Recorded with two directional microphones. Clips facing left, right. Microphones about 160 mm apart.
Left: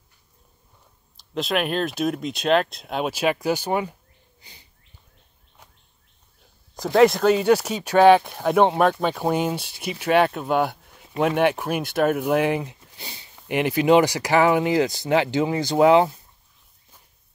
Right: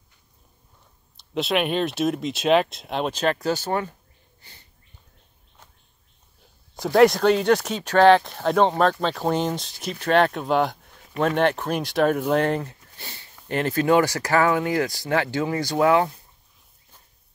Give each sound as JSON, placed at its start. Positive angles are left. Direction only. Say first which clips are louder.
{"t": 1.3, "sound": "speech", "louder": "right 1 dB", "side_deg": 0}
{"t": 4.4, "sound": "a sound", "louder": "left 1 dB", "side_deg": 15}
{"t": 6.7, "sound": "speech", "louder": "even", "side_deg": 0}